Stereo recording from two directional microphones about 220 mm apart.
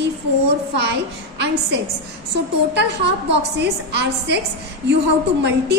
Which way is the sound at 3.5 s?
50° right (ahead or behind).